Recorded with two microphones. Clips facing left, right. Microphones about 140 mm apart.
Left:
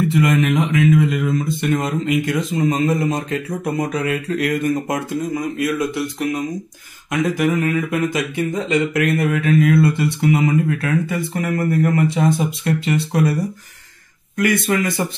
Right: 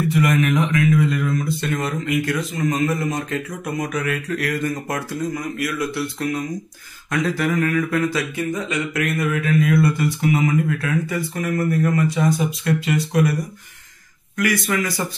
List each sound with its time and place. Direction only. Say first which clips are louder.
0.1 s a man's voice: left 2 dB; 20° left (ahead or behind)